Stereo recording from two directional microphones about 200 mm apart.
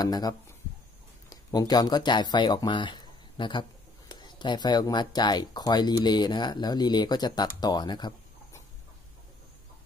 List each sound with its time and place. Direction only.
0.0 s speech: 20° left (ahead or behind)